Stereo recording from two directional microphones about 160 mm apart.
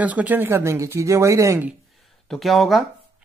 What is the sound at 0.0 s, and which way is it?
Speech, 10° right (ahead or behind).